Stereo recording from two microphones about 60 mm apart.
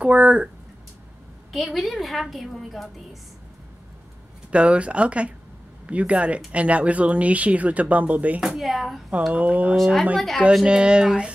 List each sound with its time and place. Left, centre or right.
0.0 s speech: right
1.5 s a woman's voice: centre
4.5 s speech: centre
8.4 s a woman's voice: centre
9.3 s speech: right
10.1 s a woman's voice: centre
10.5 s speech: centre